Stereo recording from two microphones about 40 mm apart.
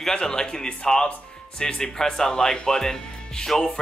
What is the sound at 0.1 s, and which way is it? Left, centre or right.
Speech, centre.